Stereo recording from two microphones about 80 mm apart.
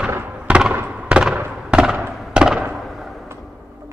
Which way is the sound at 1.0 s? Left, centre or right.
Centre.